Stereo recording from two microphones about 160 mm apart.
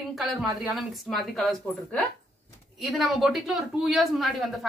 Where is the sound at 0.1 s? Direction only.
Centre (ahead or behind).